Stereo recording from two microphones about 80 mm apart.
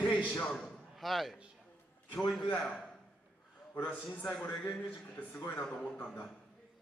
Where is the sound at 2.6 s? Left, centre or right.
Centre.